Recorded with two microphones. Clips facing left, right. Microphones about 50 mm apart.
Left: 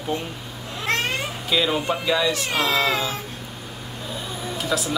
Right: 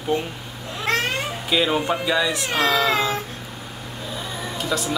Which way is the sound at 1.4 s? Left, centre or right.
Centre.